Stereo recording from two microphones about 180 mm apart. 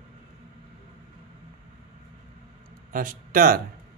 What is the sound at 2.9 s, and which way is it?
Speech, 50° right (ahead or behind).